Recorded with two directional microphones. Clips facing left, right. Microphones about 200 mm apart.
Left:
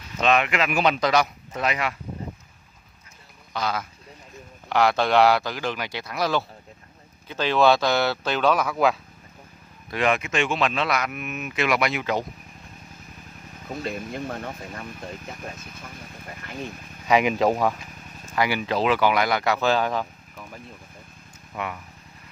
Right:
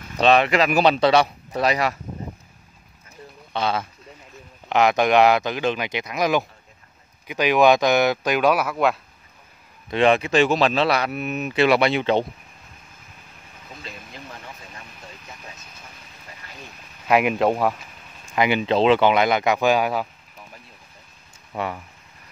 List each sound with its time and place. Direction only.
0.2 s speech: 35° right (ahead or behind)
3.5 s speech: 25° right (ahead or behind); by 8.9 s centre (ahead or behind)
9.8 s speech: 25° right (ahead or behind)
13.7 s speech: 50° left (ahead or behind)
17.1 s speech: centre (ahead or behind)
18.3 s speech: 20° right (ahead or behind)
21.5 s speech: 30° right (ahead or behind)